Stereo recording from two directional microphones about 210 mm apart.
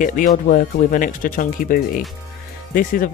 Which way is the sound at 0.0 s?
40° left (ahead or behind).